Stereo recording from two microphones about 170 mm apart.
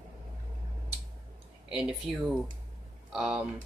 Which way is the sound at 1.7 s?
5° right (ahead or behind).